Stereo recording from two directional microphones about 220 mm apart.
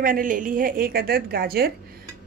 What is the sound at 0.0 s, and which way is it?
A woman's voice, 40° right (ahead or behind).